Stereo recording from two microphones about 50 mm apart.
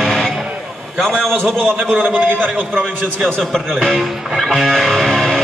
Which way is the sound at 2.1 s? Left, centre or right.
Right.